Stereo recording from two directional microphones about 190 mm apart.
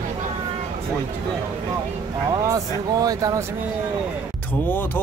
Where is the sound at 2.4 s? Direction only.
20° right (ahead or behind).